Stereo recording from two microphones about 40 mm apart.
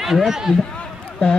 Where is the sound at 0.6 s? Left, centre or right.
Left.